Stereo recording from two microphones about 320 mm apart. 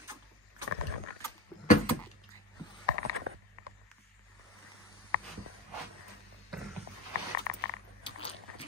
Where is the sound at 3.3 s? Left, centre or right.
Right.